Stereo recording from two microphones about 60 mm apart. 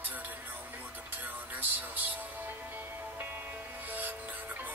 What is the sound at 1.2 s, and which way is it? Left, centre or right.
Music, right.